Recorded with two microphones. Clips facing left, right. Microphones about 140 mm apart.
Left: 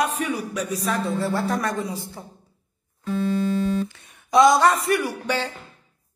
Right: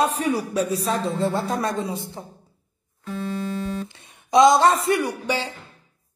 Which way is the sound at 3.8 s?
20° right (ahead or behind).